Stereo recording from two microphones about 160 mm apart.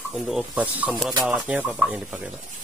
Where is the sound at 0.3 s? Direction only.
5° right (ahead or behind).